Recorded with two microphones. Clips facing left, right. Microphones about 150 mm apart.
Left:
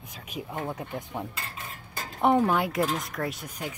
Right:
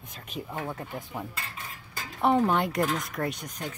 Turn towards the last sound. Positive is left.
turn(degrees=10)  # may be behind; listen again after turning